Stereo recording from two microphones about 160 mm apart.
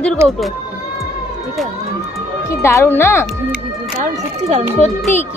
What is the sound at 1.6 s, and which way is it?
Speech, centre (ahead or behind).